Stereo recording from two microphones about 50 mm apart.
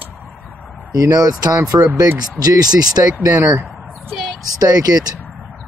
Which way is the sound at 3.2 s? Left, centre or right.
Right.